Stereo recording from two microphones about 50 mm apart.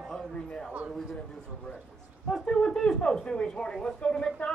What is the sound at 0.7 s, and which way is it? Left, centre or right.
Speech, right.